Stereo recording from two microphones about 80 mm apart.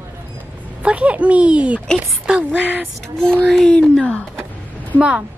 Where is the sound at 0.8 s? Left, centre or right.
Centre.